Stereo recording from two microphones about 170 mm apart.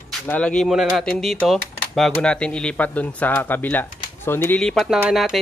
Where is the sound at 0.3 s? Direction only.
5° left (ahead or behind).